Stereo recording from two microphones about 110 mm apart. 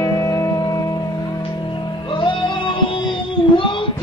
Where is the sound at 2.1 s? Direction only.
45° left (ahead or behind).